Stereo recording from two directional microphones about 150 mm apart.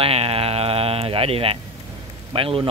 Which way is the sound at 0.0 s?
40° right (ahead or behind).